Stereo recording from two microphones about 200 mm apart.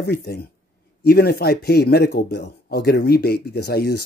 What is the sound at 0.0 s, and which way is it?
Speech, 55° left (ahead or behind).